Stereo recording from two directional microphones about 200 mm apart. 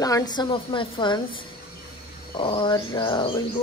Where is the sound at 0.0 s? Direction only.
20° left (ahead or behind).